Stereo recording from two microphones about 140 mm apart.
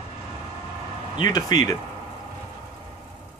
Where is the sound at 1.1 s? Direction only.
30° left (ahead or behind).